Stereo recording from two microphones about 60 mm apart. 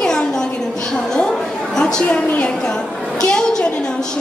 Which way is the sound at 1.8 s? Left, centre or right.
Centre.